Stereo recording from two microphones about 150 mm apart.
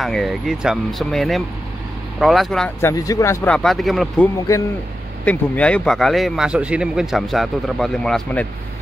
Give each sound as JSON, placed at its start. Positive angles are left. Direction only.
{"t": 0.0, "sound": "a man's voice", "side_deg": 0}
{"t": 2.8, "sound": "speech", "side_deg": 20}
{"t": 3.4, "sound": "a man's voice", "side_deg": 5}